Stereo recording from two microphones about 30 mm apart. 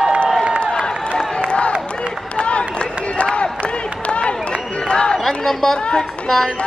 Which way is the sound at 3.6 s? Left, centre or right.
Left.